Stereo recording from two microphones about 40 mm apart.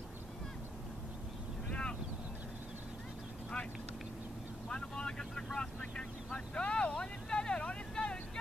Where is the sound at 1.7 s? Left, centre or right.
Left.